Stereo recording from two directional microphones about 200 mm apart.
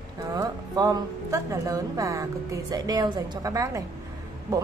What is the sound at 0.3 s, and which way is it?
A woman's voice, 20° right (ahead or behind).